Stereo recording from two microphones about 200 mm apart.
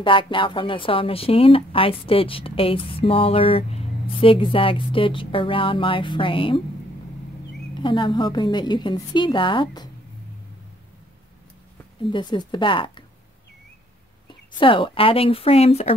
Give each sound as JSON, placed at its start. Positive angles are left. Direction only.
{"t": 0.0, "sound": "speech", "side_deg": 25}
{"t": 7.8, "sound": "speech", "side_deg": 25}
{"t": 12.1, "sound": "speech", "side_deg": 20}
{"t": 14.6, "sound": "speech", "side_deg": 25}